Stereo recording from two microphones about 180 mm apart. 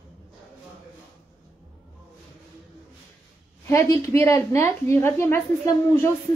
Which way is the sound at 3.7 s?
15° left (ahead or behind).